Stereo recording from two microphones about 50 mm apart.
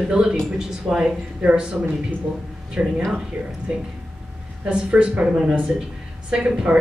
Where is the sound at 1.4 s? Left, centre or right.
Right.